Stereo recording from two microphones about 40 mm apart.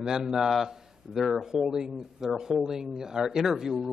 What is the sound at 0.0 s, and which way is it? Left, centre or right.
A man's voice, centre.